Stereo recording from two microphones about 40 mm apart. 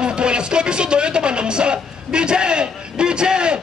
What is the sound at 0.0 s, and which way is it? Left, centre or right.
Music, right.